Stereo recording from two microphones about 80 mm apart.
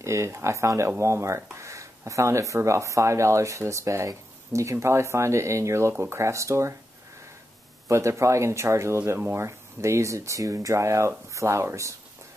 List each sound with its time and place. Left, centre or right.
0.0 s speech: right
7.9 s speech: right